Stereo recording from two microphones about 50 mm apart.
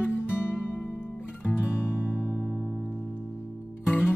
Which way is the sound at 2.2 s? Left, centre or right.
Centre.